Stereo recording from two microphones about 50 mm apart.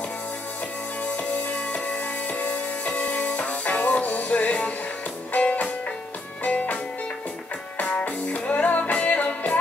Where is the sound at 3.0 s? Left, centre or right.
Left.